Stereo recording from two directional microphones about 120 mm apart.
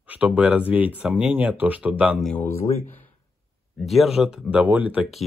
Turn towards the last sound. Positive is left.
turn(degrees=-10)  # may be behind; listen again after turning